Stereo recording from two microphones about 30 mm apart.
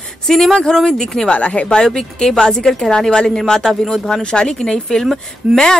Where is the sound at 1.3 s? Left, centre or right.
Left.